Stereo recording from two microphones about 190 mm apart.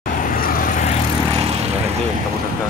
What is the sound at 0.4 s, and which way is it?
Vehicle, 45° left (ahead or behind).